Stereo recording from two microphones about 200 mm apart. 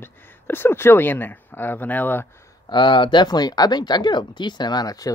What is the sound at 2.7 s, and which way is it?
Speech, 25° left (ahead or behind).